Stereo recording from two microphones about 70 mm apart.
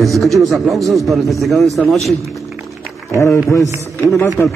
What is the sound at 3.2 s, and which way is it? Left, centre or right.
A man's voice, left.